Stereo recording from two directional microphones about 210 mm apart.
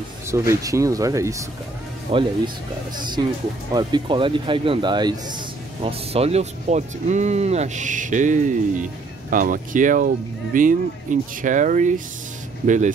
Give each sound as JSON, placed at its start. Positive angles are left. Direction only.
{"t": 0.3, "sound": "speech", "side_deg": -15}
{"t": 2.1, "sound": "speech", "side_deg": -25}
{"t": 3.7, "sound": "speech", "side_deg": -20}